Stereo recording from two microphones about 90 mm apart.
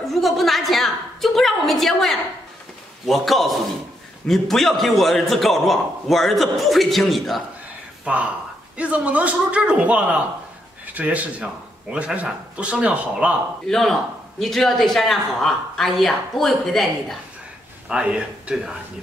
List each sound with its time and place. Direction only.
0.0 s a woman's voice: centre (ahead or behind)
8.0 s a man's voice: 15° right (ahead or behind)
13.7 s a man's voice: 5° left (ahead or behind)
17.8 s a man's voice: 10° right (ahead or behind)